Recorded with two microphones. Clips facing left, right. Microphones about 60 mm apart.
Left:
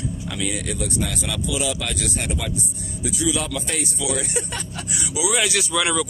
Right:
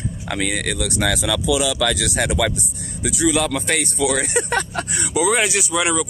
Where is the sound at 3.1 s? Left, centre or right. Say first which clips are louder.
Right 5 dB; right.